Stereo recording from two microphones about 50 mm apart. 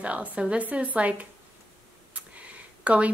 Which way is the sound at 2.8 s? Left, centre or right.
Right.